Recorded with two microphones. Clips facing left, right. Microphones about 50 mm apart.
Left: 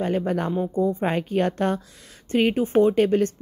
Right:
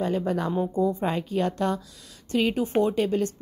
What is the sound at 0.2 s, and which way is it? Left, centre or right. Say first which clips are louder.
Speech: left 1 dB; left.